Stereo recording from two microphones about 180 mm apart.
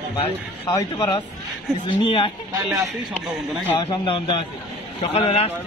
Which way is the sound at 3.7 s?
30° left (ahead or behind).